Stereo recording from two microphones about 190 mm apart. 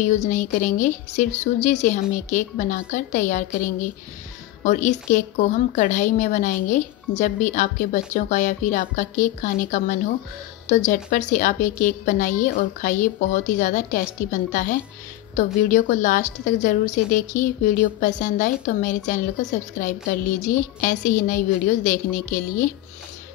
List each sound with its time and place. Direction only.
0.0 s a woman's voice: 40° left (ahead or behind)